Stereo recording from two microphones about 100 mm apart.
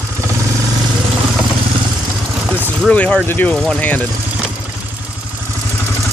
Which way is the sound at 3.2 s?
20° left (ahead or behind).